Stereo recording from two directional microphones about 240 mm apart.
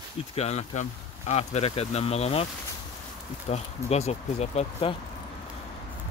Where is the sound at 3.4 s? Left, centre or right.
Left.